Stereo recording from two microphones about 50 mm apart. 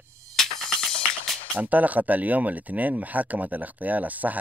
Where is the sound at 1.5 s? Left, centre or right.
Right.